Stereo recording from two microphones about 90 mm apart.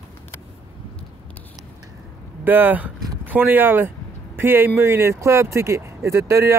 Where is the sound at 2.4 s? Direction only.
20° right (ahead or behind).